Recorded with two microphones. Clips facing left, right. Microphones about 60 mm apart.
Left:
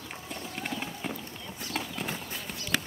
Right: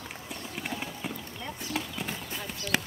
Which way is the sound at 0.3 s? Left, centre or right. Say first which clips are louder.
Left 1 dB; centre.